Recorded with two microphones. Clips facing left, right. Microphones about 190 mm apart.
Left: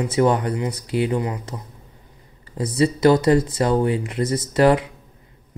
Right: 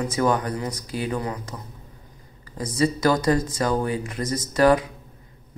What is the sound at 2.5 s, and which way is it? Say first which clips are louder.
Speech: left 3 dB; 25° left (ahead or behind).